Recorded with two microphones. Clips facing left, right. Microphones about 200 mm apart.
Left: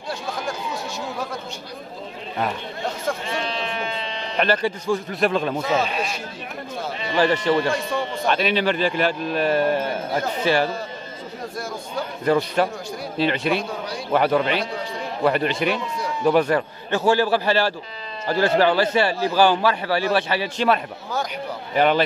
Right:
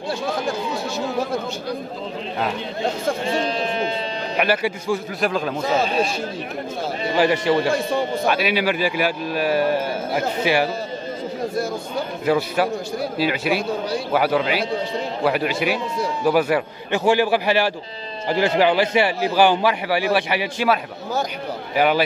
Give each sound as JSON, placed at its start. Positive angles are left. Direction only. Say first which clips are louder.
{"t": 3.1, "sound": "speech", "louder": "right 4 dB", "side_deg": -35}
{"t": 4.4, "sound": "a man's voice", "louder": "even", "side_deg": -10}
{"t": 5.8, "sound": "speech", "louder": "right 4 dB", "side_deg": -35}
{"t": 7.2, "sound": "a man's voice", "louder": "right 1 dB", "side_deg": -10}
{"t": 12.3, "sound": "a man's voice", "louder": "even", "side_deg": -5}
{"t": 21.7, "sound": "a man's voice", "louder": "even", "side_deg": -5}